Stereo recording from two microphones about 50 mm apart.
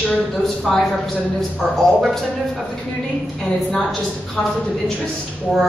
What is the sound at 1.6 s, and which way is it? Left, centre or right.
Speech, centre.